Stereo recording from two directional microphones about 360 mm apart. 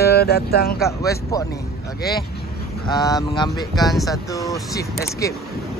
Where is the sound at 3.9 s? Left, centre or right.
Centre.